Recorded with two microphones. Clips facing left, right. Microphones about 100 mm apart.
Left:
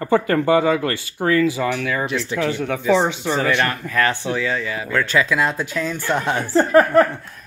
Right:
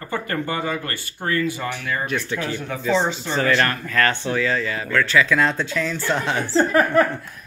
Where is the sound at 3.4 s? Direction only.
15° left (ahead or behind).